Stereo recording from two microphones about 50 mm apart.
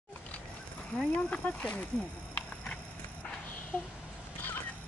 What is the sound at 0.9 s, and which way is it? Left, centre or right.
Speech, left.